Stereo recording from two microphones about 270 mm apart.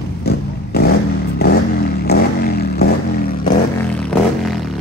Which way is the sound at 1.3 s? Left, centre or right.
Left.